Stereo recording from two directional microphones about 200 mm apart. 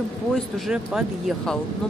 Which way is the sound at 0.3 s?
Centre (ahead or behind).